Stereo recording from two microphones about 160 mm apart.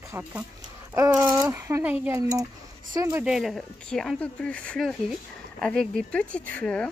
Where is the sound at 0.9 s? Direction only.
20° right (ahead or behind).